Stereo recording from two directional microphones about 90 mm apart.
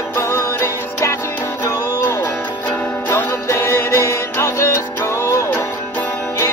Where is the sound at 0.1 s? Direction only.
30° left (ahead or behind).